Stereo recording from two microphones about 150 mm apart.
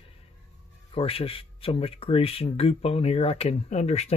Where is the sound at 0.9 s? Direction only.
40° left (ahead or behind).